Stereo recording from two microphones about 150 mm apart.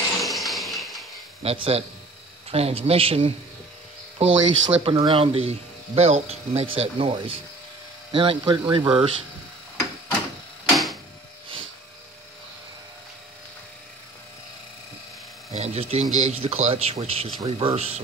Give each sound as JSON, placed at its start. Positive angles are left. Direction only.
{"t": 0.2, "sound": "a sound", "side_deg": 0}
{"t": 1.4, "sound": "speech", "side_deg": -40}
{"t": 15.5, "sound": "speech", "side_deg": -45}